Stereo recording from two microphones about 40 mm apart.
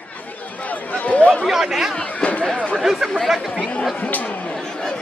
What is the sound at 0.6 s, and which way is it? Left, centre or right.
Chatter, left.